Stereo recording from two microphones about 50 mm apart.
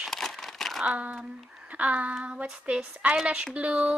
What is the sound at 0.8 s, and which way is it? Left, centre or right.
A woman's voice, right.